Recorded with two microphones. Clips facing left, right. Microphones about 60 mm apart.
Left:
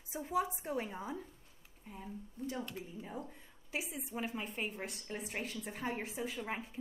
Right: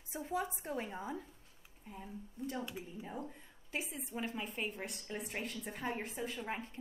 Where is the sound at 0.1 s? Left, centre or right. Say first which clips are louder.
Left 3 dB; centre.